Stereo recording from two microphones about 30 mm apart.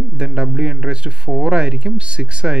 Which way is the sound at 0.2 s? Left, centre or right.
Right.